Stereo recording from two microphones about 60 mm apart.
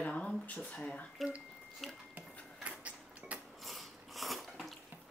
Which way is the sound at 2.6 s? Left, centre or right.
Right.